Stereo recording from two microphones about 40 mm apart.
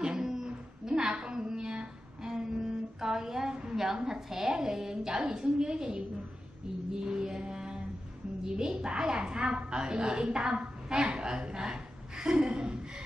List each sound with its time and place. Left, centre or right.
0.0 s a sound: centre
7.1 s music: right
8.5 s a woman's voice: centre